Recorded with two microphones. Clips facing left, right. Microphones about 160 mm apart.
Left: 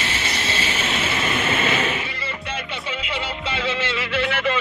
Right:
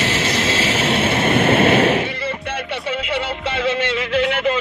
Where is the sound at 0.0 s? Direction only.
90° right.